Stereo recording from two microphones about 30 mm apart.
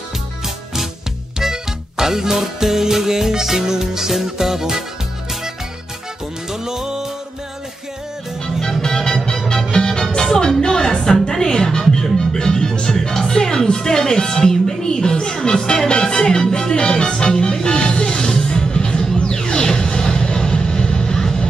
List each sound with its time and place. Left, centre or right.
1.4 s music: centre
6.5 s music: centre
8.8 s music: centre
10.6 s speech: left
11.2 s music: left
13.7 s speech: left
15.9 s music: left